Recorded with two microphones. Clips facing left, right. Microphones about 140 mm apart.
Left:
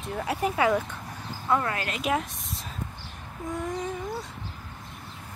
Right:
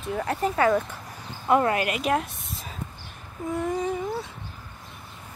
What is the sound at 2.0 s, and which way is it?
Speech, centre (ahead or behind).